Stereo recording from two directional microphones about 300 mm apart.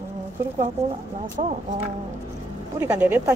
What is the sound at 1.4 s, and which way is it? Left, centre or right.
Speech, right.